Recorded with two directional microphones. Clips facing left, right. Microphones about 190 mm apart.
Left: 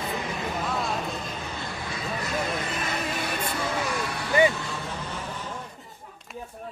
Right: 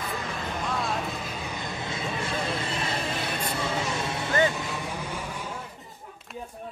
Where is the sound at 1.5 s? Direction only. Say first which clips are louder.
Right 1 dB; 20° right (ahead or behind).